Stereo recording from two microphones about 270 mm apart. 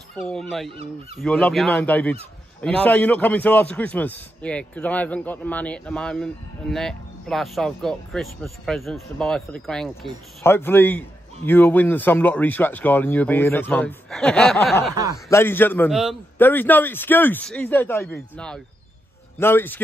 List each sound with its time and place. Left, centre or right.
0.2 s a man's voice: centre
0.7 s speech: right
1.2 s a man's voice: centre